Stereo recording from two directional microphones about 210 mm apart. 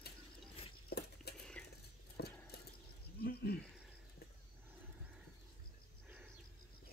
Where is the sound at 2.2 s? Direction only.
50° left (ahead or behind).